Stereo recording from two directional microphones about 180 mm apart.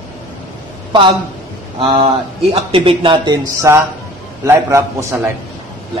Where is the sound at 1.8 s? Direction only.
25° right (ahead or behind).